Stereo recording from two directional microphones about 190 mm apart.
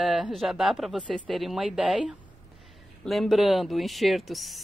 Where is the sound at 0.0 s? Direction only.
Centre (ahead or behind).